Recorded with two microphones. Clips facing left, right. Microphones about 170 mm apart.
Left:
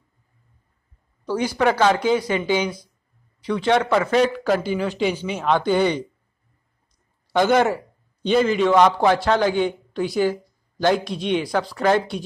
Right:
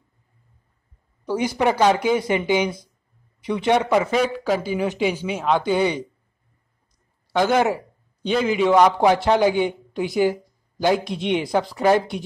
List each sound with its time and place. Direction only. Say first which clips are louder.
1.2 s speech: even; 15° right (ahead or behind)
7.3 s a man's voice: left 1 dB; 5° right (ahead or behind)